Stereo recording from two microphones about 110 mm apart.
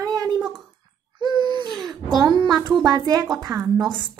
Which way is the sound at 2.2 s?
40° right (ahead or behind).